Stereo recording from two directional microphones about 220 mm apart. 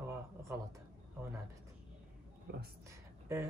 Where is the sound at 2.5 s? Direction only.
50° right (ahead or behind).